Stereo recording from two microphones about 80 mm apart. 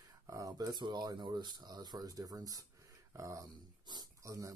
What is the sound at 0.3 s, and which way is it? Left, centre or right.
Speech, right.